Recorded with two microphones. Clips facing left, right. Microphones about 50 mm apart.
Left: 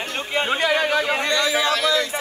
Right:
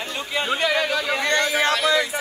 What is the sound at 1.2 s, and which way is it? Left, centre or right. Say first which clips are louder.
Speech: even; right.